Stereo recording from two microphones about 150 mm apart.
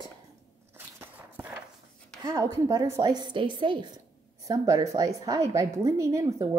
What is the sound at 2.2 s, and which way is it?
A woman's voice, 20° right (ahead or behind).